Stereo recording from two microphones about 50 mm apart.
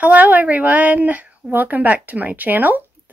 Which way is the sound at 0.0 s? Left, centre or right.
Right.